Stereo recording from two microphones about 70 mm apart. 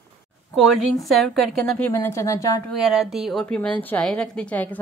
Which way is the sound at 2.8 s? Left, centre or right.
Centre.